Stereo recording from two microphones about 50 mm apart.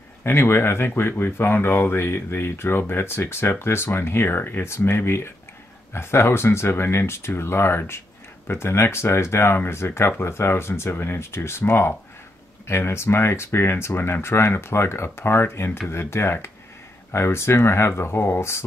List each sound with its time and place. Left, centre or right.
0.2 s speech: left